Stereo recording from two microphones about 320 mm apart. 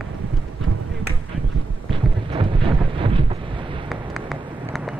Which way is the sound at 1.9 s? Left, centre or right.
Centre.